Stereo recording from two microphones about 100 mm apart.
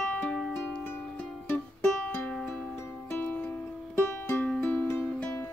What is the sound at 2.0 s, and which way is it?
Music, 15° left (ahead or behind).